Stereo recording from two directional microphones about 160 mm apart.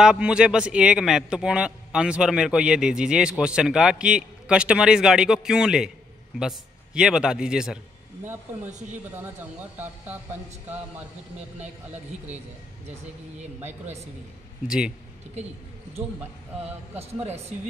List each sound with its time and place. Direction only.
0.0 s a man's voice: 5° right (ahead or behind)
13.4 s speech: 45° right (ahead or behind)
17.0 s speech: 40° right (ahead or behind)